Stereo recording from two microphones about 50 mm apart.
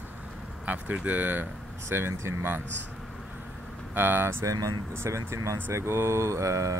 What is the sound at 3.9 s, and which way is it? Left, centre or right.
Speech, right.